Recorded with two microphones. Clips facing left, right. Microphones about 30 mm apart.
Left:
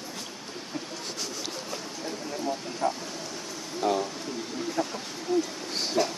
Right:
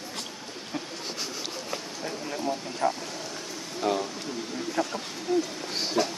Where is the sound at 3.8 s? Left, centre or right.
Centre.